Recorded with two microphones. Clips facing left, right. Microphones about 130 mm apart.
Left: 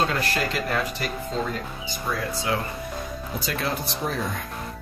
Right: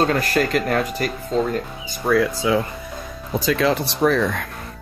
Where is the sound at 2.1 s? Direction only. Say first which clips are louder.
Right 12 dB; 65° right (ahead or behind).